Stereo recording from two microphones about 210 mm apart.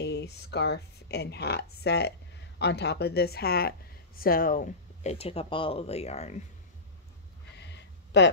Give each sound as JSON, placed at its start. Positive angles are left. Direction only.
{"t": 0.0, "sound": "a woman's voice", "side_deg": 55}
{"t": 5.1, "sound": "speech", "side_deg": 30}
{"t": 7.5, "sound": "a sound", "side_deg": 55}